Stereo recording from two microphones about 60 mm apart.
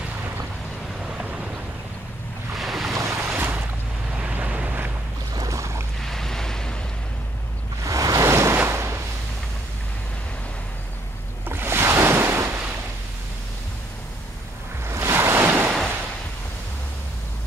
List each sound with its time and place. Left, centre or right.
1.0 s a sound: centre
2.5 s waves: centre
2.9 s boat: right
3.3 s boat: right
5.3 s boat: right
5.6 s boat: right
5.9 s waves: centre
7.8 s waves: right
8.3 s waves: right
8.6 s a sound: right
11.4 s waves: right
14.9 s waves: right